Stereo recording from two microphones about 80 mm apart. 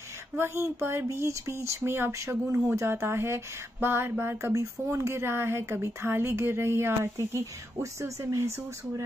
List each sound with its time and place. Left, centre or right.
0.4 s speech: right